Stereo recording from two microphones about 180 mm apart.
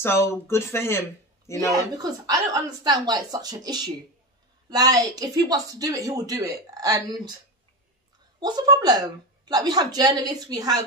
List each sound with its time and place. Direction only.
0.0 s speech: 15° left (ahead or behind)
2.0 s speech: 20° right (ahead or behind)
8.4 s speech: 25° right (ahead or behind)